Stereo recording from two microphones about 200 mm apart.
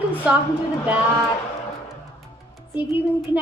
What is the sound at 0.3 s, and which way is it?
Speech, 5° right (ahead or behind).